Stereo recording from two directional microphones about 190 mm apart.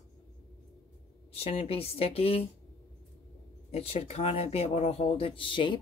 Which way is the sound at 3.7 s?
30° left (ahead or behind).